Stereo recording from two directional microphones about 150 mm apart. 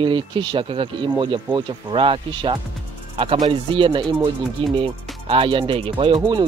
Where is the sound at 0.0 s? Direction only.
30° right (ahead or behind).